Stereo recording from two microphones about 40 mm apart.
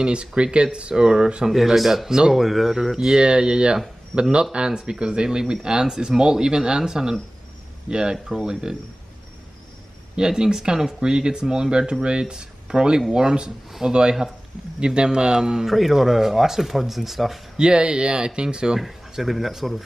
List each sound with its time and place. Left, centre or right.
0.0 s speech: right
1.5 s speech: centre
2.0 s speech: centre
2.3 s speech: centre
3.2 s speech: right
8.3 s speech: centre
10.1 s speech: centre
15.6 s speech: centre
17.6 s speech: right
18.8 s speech: centre